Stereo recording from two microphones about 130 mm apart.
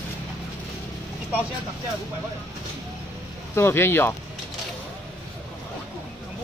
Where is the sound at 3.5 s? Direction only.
20° left (ahead or behind).